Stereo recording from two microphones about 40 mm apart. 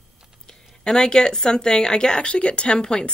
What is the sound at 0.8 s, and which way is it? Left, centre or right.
Speech, centre.